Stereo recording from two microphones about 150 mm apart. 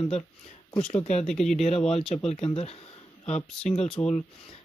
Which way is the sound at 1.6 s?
40° left (ahead or behind).